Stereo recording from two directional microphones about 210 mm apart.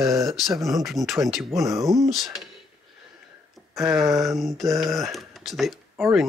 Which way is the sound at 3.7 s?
Centre (ahead or behind).